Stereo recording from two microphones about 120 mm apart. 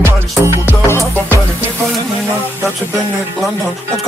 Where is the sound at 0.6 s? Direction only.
20° left (ahead or behind).